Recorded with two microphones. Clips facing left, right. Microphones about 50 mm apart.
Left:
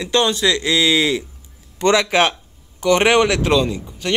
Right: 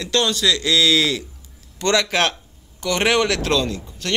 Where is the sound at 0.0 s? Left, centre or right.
Centre.